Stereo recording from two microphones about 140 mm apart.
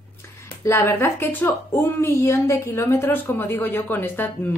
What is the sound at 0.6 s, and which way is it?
A woman's voice, 20° left (ahead or behind).